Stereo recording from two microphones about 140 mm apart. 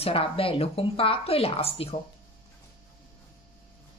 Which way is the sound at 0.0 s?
40° left (ahead or behind).